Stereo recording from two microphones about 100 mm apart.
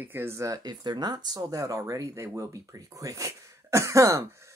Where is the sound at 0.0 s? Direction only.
20° right (ahead or behind).